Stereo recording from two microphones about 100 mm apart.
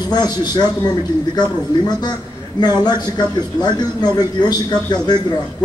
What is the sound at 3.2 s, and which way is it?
Speech, 45° left (ahead or behind).